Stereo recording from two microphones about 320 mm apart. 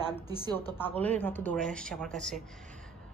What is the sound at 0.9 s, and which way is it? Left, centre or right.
Speech, centre.